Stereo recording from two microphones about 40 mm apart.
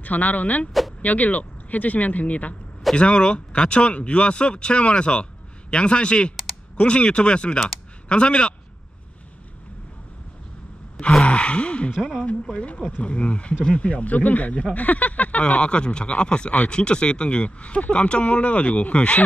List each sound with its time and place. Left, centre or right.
0.0 s speech: left
2.9 s speech: left
11.2 s speech: left